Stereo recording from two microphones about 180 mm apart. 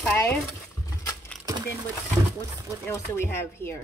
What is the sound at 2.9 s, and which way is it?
Speech, 15° left (ahead or behind).